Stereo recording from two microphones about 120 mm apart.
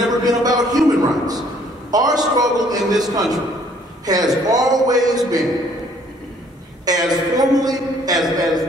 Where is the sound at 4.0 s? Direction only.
30° right (ahead or behind).